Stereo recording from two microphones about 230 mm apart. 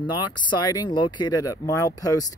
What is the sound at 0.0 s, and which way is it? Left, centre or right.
Speech, centre.